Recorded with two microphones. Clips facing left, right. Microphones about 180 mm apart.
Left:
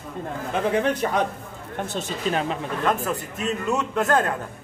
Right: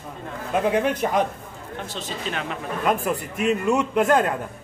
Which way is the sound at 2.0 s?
35° left (ahead or behind).